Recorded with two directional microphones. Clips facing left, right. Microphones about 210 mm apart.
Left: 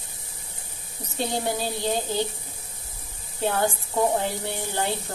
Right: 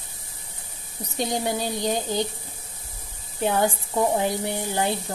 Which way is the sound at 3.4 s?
15° right (ahead or behind).